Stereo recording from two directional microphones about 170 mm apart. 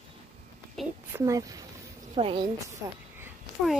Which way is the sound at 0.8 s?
Centre (ahead or behind).